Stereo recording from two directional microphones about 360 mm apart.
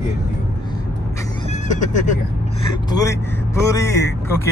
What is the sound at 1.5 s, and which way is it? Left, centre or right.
Speech, centre.